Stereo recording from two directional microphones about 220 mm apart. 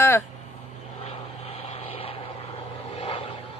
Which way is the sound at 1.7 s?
25° left (ahead or behind).